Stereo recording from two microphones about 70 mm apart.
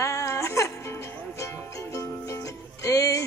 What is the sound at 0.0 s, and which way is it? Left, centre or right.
Music, left.